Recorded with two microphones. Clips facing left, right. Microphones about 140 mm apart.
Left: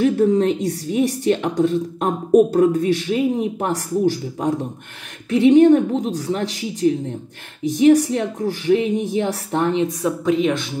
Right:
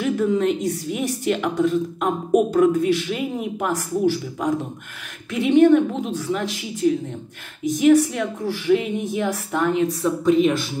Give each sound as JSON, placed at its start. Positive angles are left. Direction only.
{"t": 0.0, "sound": "a woman's voice", "side_deg": 35}
{"t": 10.2, "sound": "speech", "side_deg": 0}